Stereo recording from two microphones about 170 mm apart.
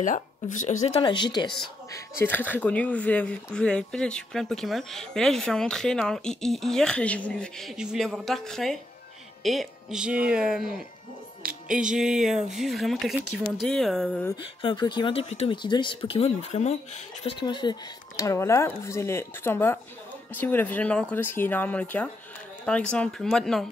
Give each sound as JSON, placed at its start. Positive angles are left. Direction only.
{"t": 0.0, "sound": "speech", "side_deg": 50}
{"t": 1.0, "sound": "speech", "side_deg": 25}
{"t": 1.9, "sound": "speech", "side_deg": 15}
{"t": 14.3, "sound": "speech", "side_deg": 30}